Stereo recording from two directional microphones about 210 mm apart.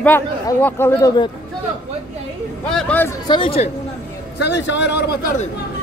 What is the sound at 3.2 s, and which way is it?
Speech, 20° left (ahead or behind).